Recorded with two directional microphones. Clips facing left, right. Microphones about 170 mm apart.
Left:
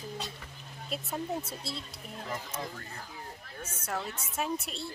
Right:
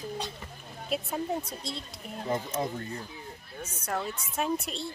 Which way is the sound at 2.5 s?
25° right (ahead or behind).